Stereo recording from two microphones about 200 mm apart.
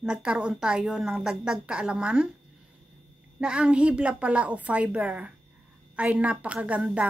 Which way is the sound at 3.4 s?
5° right (ahead or behind).